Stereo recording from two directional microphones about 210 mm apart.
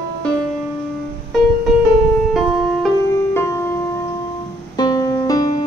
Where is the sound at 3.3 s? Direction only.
10° left (ahead or behind).